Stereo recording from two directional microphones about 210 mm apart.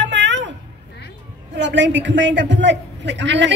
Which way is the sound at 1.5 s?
55° right (ahead or behind).